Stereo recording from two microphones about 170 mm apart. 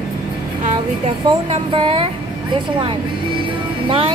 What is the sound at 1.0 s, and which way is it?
A woman's voice, 35° right (ahead or behind).